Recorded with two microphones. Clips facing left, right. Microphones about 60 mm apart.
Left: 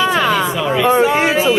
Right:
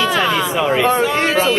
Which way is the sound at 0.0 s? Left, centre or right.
Centre.